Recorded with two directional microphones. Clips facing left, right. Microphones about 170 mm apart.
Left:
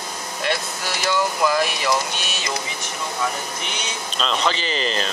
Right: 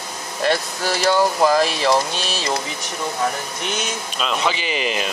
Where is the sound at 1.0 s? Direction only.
35° right (ahead or behind).